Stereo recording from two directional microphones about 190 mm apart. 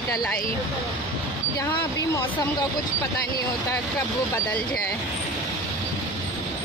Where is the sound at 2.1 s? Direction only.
20° left (ahead or behind).